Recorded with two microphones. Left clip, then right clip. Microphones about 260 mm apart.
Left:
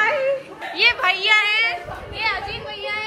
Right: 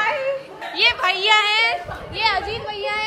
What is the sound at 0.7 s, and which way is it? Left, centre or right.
A man's voice, centre.